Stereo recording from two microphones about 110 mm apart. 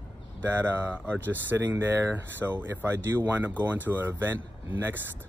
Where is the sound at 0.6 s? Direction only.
20° right (ahead or behind).